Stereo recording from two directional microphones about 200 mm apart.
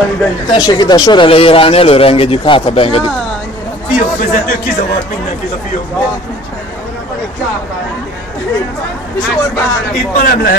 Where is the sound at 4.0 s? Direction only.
45° left (ahead or behind).